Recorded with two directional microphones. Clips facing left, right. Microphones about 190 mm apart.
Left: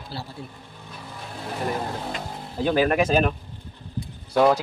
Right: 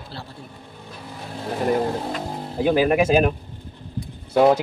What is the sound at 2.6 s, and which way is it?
Speech, 10° right (ahead or behind).